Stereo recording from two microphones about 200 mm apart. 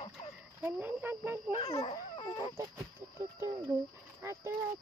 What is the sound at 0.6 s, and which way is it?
Speech, 10° right (ahead or behind).